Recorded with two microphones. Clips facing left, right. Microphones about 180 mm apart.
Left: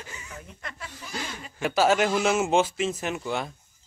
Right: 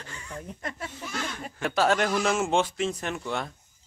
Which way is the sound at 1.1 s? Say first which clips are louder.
Even; 5° left (ahead or behind).